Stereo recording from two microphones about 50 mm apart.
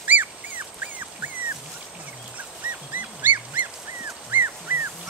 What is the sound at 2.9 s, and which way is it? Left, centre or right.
Dog, right.